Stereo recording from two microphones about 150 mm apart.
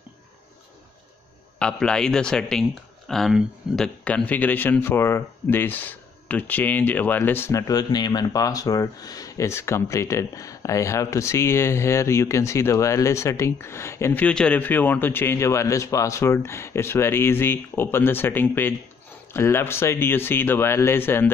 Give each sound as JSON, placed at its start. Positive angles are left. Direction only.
{"t": 1.6, "sound": "a man's voice", "side_deg": 5}